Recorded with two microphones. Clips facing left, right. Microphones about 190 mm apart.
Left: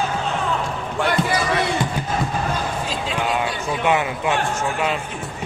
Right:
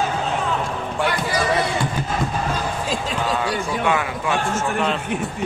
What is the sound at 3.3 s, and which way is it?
A man's voice, 20° left (ahead or behind).